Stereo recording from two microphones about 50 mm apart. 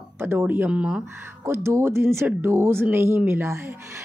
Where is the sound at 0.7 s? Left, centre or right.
Right.